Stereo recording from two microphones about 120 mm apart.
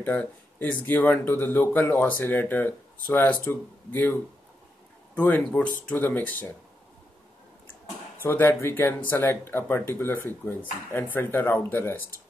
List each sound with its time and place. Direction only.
0.0 s speech: 10° left (ahead or behind)
8.2 s speech: 20° left (ahead or behind)